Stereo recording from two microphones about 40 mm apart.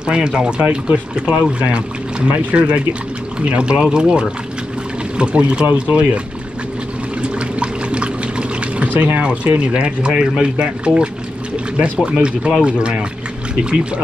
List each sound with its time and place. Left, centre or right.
0.0 s speech: right
7.2 s water: right
8.9 s speech: right
9.2 s speech: right